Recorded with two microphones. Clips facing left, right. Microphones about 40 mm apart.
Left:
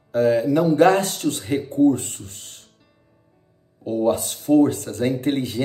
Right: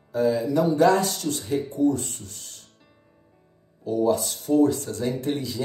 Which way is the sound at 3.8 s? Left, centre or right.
Left.